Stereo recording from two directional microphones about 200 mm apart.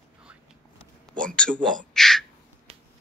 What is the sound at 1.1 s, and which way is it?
Speech, 5° left (ahead or behind).